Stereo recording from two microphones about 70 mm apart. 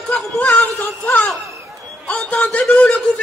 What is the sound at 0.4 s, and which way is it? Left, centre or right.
Music, centre.